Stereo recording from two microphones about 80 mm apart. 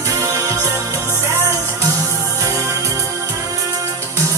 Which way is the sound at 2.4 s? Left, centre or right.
Right.